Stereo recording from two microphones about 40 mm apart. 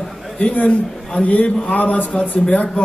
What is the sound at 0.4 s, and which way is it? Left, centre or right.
A man's voice, left.